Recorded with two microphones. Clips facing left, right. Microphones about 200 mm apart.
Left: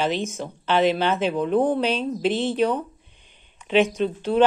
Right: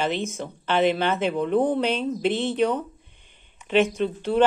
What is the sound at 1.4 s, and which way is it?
Speech, 60° left (ahead or behind).